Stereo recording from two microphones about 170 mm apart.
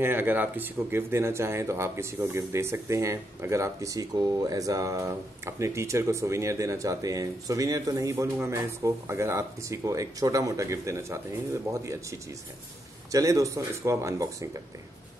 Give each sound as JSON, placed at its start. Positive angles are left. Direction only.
{"t": 0.0, "sound": "speech", "side_deg": -10}